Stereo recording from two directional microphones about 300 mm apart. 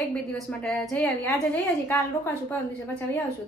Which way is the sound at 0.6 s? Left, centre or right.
Centre.